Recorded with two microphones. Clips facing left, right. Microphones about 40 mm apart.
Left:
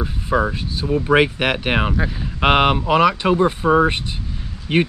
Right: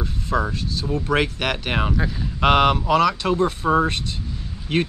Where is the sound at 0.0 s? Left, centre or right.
Centre.